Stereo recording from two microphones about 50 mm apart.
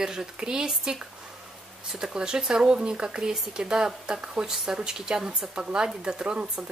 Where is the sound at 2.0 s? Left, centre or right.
Centre.